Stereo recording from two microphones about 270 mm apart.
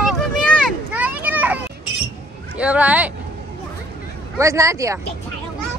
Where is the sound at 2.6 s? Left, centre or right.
Centre.